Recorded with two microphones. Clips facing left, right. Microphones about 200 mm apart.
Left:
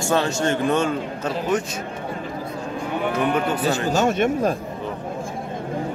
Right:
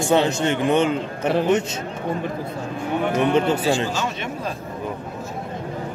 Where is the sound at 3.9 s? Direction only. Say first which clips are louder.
Left 8 dB; 50° left (ahead or behind).